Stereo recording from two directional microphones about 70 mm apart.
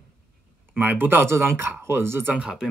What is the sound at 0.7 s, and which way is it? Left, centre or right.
Speech, right.